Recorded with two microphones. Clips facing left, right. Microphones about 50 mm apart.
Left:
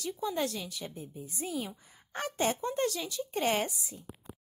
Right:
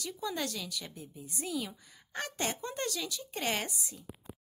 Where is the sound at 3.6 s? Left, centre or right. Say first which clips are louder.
Left 2 dB; centre.